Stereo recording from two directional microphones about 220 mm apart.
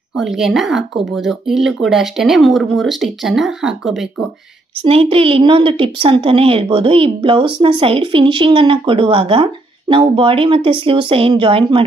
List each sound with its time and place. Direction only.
0.2 s speech: centre (ahead or behind)
4.8 s a woman's voice: 25° right (ahead or behind)